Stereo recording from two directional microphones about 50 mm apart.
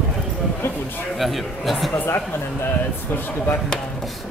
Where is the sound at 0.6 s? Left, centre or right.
Left.